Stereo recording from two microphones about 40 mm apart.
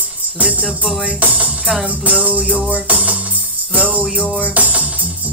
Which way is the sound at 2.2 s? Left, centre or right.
Right.